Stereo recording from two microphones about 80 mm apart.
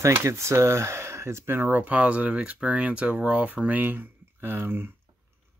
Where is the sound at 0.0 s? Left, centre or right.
Right.